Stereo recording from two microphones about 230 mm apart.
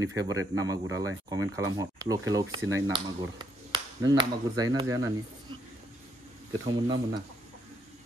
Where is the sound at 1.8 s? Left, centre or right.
Centre.